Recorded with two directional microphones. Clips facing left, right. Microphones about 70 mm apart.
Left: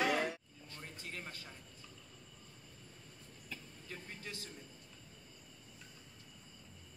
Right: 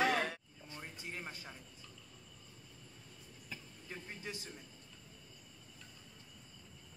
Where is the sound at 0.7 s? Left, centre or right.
Centre.